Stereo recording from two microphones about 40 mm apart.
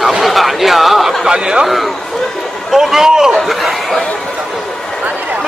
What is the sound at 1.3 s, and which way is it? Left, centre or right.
Speech, centre.